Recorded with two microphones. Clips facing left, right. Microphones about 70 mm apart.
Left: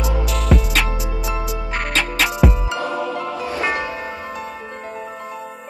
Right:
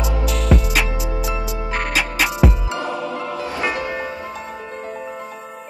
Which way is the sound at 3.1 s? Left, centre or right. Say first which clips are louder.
Left 1 dB; right.